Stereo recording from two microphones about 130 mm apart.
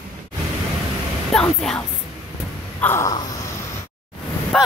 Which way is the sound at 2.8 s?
15° left (ahead or behind).